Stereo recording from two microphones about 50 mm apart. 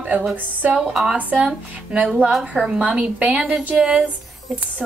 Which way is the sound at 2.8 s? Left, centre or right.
Right.